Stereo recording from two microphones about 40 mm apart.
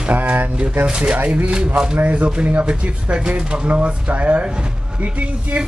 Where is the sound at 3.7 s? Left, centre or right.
Right.